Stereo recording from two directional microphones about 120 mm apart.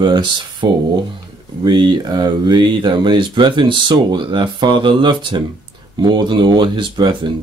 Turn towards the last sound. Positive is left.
turn(degrees=-40)  # may be behind; listen again after turning